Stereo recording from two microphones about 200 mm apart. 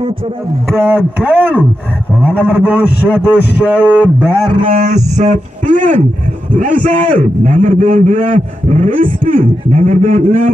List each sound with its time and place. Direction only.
0.7 s a man's voice: 10° right (ahead or behind)
4.6 s speech: 40° right (ahead or behind)